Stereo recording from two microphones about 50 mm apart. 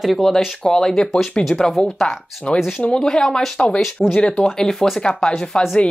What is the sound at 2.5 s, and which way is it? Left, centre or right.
Speech, left.